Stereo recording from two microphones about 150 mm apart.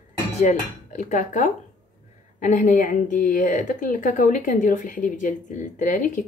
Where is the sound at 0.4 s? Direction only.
55° left (ahead or behind).